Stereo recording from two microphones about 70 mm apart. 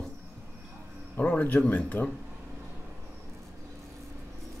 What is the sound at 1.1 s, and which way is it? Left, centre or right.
Speech, left.